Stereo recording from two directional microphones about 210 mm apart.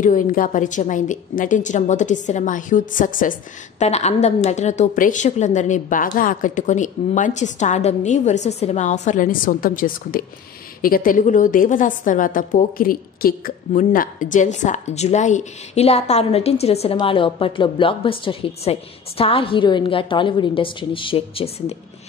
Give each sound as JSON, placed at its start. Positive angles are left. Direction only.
{"t": 0.0, "sound": "a woman's voice", "side_deg": 40}